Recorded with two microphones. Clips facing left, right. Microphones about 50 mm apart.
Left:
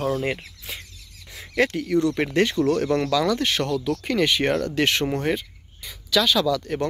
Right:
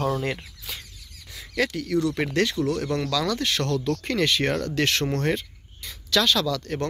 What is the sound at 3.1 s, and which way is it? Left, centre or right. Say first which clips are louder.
Speech: left 3 dB; centre.